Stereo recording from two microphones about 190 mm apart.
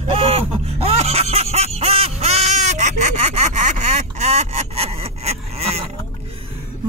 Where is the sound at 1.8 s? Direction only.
30° right (ahead or behind).